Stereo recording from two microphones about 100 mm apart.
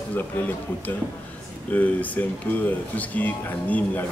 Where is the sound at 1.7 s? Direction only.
15° left (ahead or behind).